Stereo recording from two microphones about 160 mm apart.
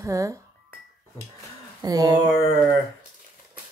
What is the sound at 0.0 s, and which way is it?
Speech, 20° right (ahead or behind).